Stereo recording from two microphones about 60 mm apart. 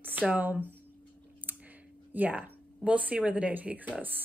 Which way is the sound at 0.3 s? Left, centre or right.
Right.